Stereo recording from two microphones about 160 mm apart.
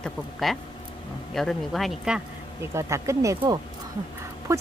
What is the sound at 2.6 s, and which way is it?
Speech, 15° right (ahead or behind).